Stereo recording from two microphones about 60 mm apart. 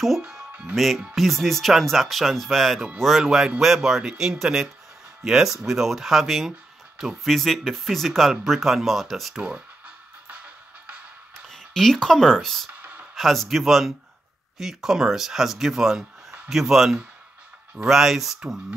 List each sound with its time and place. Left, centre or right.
0.5 s music: right
0.7 s speech: centre
10.2 s music: right
11.4 s speech: centre